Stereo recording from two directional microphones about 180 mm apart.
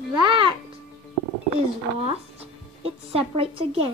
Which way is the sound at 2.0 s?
35° right (ahead or behind).